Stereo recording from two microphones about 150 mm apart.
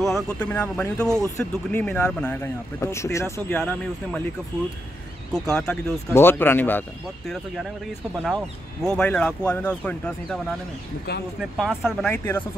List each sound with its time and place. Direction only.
0.0 s speech: 5° left (ahead or behind)
1.0 s speech: 15° right (ahead or behind)
1.3 s speech: 15° left (ahead or behind)
5.3 s speech: 5° left (ahead or behind)
6.0 s speech: 15° left (ahead or behind)
8.8 s speech: 5° left (ahead or behind)
11.5 s speech: 5° right (ahead or behind)
12.1 s speech: 10° left (ahead or behind)